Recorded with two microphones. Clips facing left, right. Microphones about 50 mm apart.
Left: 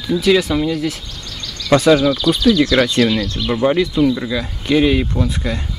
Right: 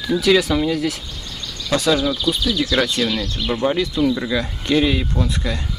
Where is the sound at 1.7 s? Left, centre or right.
Left.